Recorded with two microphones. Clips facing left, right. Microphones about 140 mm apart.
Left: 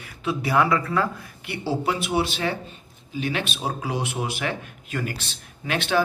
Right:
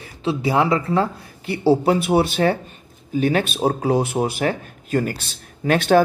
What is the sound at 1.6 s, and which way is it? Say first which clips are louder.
Speech: right 9 dB; 45° right (ahead or behind).